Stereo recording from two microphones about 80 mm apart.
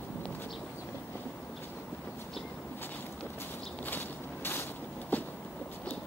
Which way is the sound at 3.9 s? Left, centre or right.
Left.